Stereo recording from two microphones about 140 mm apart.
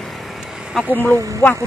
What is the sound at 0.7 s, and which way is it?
Speech, 5° right (ahead or behind).